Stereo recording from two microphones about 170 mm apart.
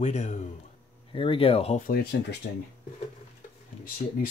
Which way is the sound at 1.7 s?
60° left (ahead or behind).